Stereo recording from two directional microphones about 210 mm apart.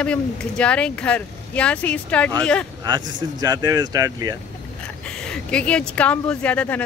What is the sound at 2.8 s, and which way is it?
Speech, 20° right (ahead or behind).